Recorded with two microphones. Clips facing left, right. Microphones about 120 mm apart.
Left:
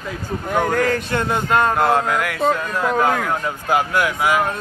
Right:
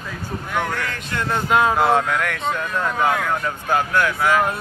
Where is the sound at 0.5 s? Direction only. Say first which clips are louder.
Left 7 dB; 40° left (ahead or behind).